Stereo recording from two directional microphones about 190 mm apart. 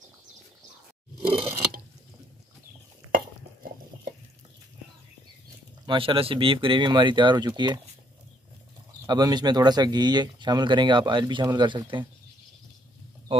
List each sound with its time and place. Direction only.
1.2 s a sound: 30° right (ahead or behind)
5.9 s speech: 30° right (ahead or behind)
9.0 s speech: 20° right (ahead or behind)